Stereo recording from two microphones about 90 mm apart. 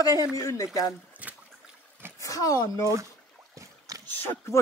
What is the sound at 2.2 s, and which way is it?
Speech, 40° left (ahead or behind).